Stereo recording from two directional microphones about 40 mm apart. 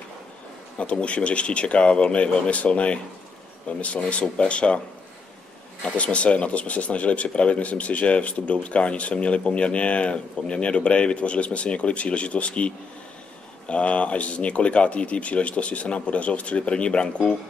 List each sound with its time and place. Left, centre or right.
1.0 s speech: left
5.9 s speech: left